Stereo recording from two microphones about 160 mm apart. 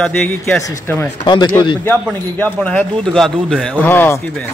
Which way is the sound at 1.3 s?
30° left (ahead or behind).